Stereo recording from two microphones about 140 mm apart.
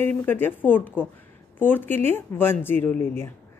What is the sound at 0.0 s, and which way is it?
A woman's voice, 15° left (ahead or behind).